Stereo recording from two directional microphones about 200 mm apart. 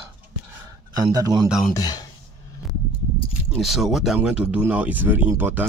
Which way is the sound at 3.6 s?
Centre (ahead or behind).